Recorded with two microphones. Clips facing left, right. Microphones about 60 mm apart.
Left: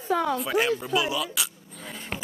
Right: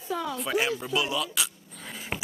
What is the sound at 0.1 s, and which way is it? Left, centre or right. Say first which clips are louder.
Speech: left 6 dB; left.